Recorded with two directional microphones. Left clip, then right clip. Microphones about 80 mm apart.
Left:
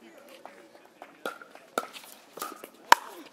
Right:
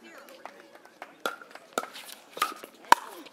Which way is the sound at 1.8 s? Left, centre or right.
Centre.